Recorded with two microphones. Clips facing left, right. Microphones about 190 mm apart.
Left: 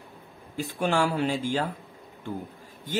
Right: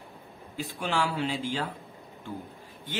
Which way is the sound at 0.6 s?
45° left (ahead or behind).